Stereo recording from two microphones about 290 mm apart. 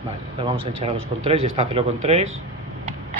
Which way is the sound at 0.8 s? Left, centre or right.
Right.